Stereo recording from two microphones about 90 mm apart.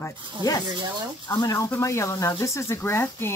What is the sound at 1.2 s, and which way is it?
Speech, 40° left (ahead or behind).